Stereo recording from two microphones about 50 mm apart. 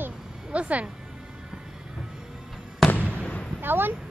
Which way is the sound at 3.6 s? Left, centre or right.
Right.